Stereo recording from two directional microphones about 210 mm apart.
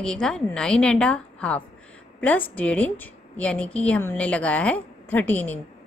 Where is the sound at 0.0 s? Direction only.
5° left (ahead or behind).